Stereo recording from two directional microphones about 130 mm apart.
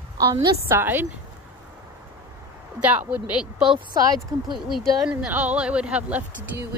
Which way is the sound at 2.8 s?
10° right (ahead or behind).